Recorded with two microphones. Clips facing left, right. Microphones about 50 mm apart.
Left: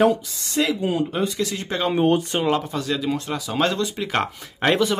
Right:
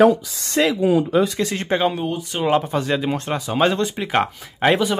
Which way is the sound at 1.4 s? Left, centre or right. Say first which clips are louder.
Right 3 dB; right.